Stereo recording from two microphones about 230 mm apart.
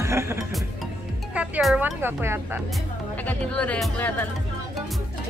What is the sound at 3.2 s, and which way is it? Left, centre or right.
Music, centre.